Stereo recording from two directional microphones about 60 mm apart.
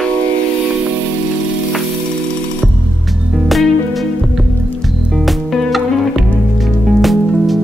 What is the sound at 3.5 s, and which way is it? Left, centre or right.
Music, centre.